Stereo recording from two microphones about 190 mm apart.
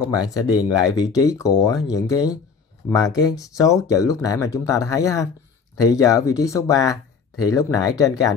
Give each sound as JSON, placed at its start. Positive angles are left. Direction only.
{"t": 0.3, "sound": "speech", "side_deg": 20}